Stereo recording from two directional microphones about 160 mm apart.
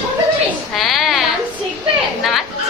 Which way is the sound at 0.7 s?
Centre (ahead or behind).